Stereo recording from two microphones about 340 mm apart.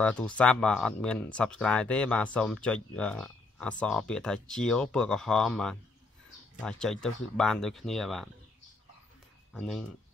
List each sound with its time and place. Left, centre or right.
0.0 s speech: centre
9.5 s speech: centre